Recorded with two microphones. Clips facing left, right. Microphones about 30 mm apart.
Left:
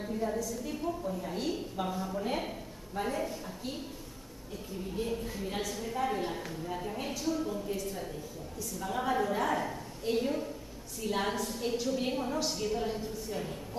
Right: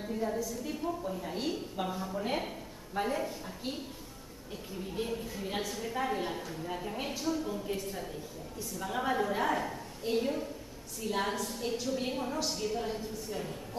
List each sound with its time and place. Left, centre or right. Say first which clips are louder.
0.1 s a woman's voice: even; centre
5.0 s a woman's voice: left 1 dB; right
5.4 s a woman's voice: even; centre
8.7 s a woman's voice: even; centre